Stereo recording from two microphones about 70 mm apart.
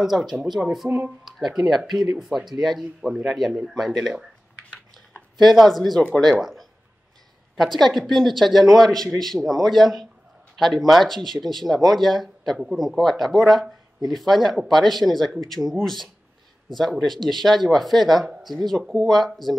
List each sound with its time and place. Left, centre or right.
0.0 s speech: centre
0.8 s speech: right
1.2 s speech: centre
6.4 s a sound: centre
7.5 s speech: centre